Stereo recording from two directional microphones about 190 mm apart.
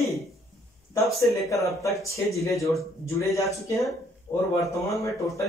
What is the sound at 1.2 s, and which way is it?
Speech, 15° left (ahead or behind).